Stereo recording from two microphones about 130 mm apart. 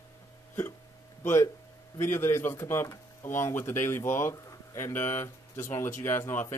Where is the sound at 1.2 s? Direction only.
20° left (ahead or behind).